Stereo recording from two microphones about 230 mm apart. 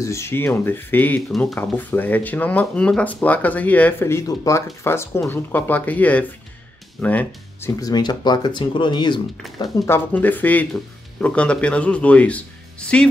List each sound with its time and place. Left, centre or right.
0.0 s speech: centre